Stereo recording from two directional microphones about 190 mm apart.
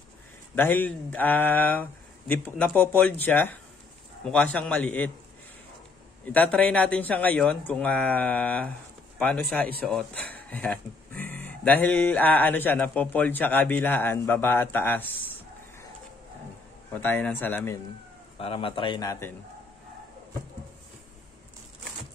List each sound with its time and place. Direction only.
0.6 s a man's voice: 10° left (ahead or behind)
6.2 s speech: 10° left (ahead or behind)
16.9 s speech: 10° left (ahead or behind)
18.4 s speech: 30° left (ahead or behind)